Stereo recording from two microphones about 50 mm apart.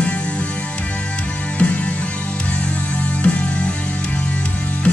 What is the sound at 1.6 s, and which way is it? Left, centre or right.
Music, left.